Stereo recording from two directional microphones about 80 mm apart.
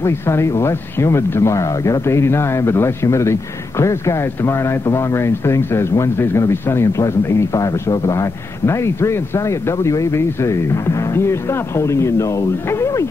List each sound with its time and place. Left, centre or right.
0.0 s speech: left